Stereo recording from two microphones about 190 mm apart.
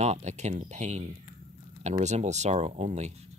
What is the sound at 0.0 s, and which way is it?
Speech, 35° right (ahead or behind).